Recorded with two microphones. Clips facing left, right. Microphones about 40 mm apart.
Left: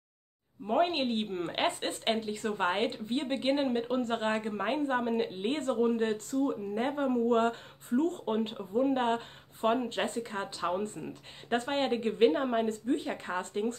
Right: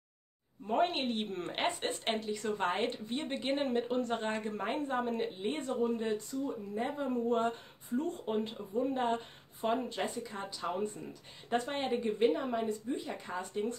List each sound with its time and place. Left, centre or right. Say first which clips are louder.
0.7 s a woman's voice: left 3 dB; centre; by 8.2 s left
8.3 s speech: left 3 dB; left